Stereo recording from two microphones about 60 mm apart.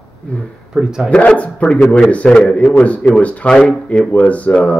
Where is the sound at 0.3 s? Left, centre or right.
Left.